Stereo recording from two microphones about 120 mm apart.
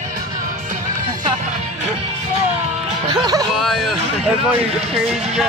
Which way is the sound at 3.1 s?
35° right (ahead or behind).